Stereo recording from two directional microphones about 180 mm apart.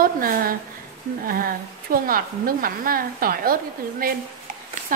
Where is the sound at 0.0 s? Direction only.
55° right (ahead or behind).